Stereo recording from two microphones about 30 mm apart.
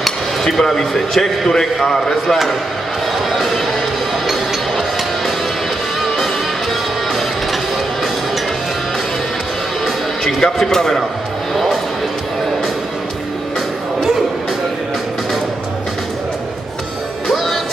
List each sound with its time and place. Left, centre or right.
0.0 s speech: centre
3.3 s music: centre
10.4 s a man's voice: centre
11.5 s music: centre